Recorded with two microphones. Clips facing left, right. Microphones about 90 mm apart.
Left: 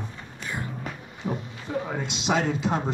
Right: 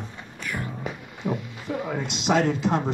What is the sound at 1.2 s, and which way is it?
Speech, 10° right (ahead or behind).